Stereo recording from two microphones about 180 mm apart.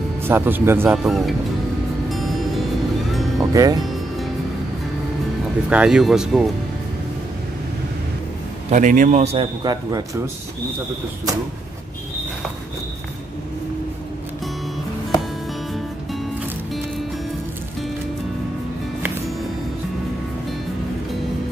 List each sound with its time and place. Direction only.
0.3 s speech: 15° right (ahead or behind)
0.9 s speech: centre (ahead or behind)
2.0 s music: centre (ahead or behind)
3.3 s speech: 20° right (ahead or behind)
5.7 s speech: 5° right (ahead or behind)
8.6 s a man's voice: 45° right (ahead or behind); by 10.0 s 20° right (ahead or behind)